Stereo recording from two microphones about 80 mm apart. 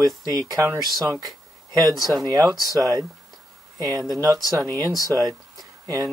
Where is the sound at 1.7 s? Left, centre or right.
Right.